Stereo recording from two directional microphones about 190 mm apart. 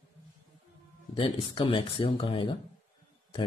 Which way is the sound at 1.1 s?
25° left (ahead or behind).